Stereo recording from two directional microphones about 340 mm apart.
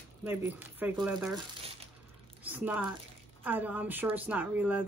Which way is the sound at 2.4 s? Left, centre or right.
Centre.